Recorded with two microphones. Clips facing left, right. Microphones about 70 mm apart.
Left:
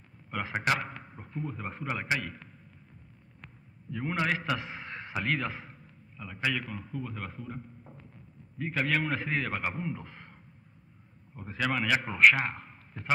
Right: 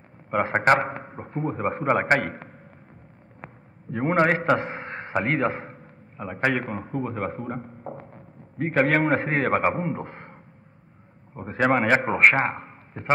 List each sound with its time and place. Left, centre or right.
0.3 s a man's voice: right